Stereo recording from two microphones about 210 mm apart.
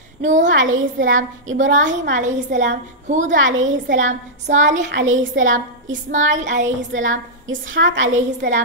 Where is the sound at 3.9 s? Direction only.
35° right (ahead or behind).